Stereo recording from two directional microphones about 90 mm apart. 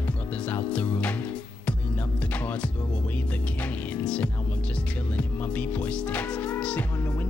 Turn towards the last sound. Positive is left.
turn(degrees=15)  # may be behind; listen again after turning